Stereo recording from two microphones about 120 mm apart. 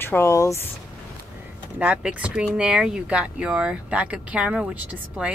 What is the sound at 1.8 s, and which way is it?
Speech, 10° right (ahead or behind).